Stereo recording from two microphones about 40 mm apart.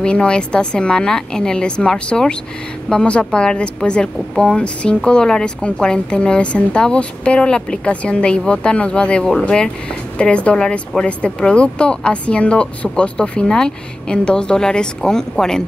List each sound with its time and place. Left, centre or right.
0.0 s speech: left
7.9 s speech: left; by 15.6 s centre